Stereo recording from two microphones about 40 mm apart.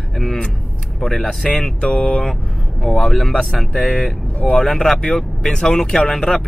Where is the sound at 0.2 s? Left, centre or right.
Centre.